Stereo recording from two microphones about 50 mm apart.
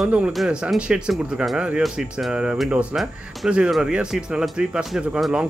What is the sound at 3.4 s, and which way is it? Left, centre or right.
Speech, centre.